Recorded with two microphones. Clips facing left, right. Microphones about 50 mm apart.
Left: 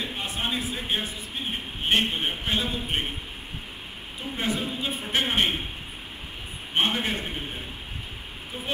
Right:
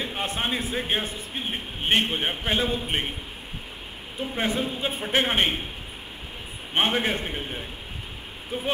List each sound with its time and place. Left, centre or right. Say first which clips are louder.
0.2 s a man's voice: right 3 dB; right
4.4 s a man's voice: right 2 dB; right
6.9 s a man's voice: right 3 dB; right